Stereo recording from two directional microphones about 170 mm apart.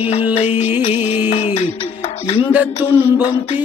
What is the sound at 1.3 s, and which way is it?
Music, 40° left (ahead or behind).